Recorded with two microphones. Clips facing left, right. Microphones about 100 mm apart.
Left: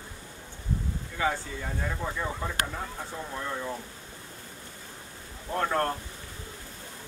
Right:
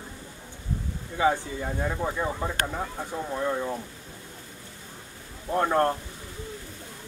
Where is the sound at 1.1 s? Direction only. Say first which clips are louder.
Right 6 dB; 20° right (ahead or behind).